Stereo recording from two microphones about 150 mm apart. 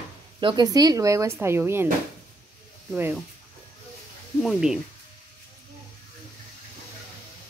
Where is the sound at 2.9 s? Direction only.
10° right (ahead or behind).